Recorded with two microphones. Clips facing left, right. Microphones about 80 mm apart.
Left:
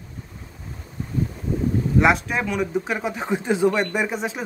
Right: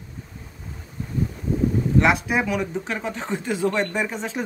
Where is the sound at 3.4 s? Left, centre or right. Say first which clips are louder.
Left 4 dB; left.